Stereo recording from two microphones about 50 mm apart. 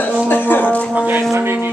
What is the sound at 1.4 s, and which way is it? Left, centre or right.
Speech, right.